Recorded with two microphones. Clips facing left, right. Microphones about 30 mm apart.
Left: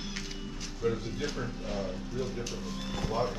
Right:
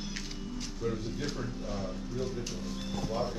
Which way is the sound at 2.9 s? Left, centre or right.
Left.